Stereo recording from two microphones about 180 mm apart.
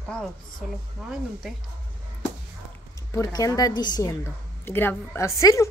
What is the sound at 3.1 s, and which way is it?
A woman's voice, 20° left (ahead or behind).